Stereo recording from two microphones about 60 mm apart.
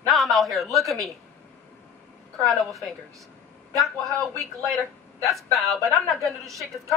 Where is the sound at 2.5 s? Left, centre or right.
Centre.